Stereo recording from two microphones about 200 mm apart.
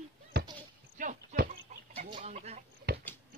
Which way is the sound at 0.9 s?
40° right (ahead or behind).